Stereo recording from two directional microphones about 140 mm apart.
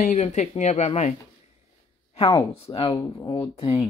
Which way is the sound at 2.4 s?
40° left (ahead or behind).